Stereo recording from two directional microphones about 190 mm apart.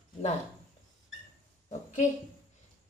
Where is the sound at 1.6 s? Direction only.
40° left (ahead or behind).